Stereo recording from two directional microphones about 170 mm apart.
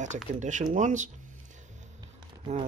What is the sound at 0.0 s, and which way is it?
Speech, 45° right (ahead or behind).